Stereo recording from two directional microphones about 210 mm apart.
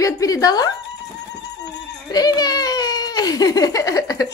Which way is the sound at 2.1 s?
20° left (ahead or behind).